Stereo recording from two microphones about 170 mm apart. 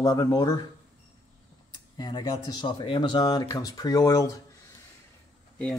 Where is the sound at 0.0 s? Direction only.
20° left (ahead or behind).